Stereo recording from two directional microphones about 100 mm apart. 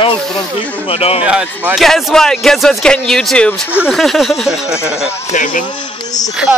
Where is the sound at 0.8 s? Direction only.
80° left.